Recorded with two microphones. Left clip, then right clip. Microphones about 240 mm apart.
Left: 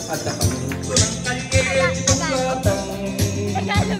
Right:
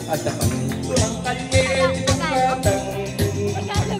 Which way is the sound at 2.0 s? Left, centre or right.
Right.